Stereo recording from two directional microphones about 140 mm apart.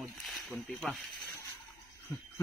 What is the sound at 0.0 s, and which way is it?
Snake, centre (ahead or behind).